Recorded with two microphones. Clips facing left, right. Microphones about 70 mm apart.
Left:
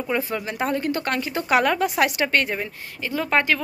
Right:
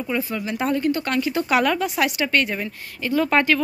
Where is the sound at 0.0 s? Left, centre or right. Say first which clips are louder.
Even; left.